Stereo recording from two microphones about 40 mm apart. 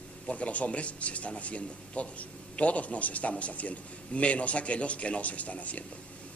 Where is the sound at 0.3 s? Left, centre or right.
Left.